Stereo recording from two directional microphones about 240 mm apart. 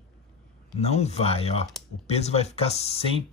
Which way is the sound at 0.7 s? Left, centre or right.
Left.